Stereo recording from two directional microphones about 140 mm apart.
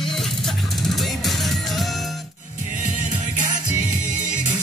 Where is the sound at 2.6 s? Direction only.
50° left (ahead or behind).